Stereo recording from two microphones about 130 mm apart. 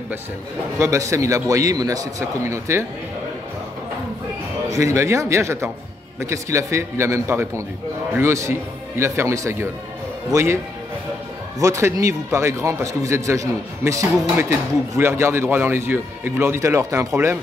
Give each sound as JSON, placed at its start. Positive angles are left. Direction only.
{"t": 0.7, "sound": "speech", "side_deg": -25}
{"t": 4.6, "sound": "speech", "side_deg": -25}
{"t": 11.6, "sound": "speech", "side_deg": -20}